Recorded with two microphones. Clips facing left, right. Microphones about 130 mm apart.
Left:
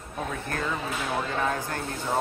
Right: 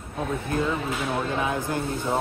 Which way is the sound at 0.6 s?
5° right (ahead or behind).